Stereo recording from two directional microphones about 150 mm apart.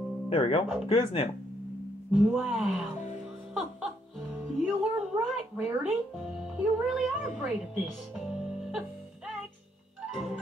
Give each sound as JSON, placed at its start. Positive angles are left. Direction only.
{"t": 0.3, "sound": "speech", "side_deg": 40}
{"t": 2.1, "sound": "speech", "side_deg": -5}
{"t": 4.6, "sound": "speech", "side_deg": -5}
{"t": 10.1, "sound": "music", "side_deg": -5}